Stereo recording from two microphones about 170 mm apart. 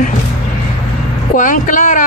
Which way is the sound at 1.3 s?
50° left (ahead or behind).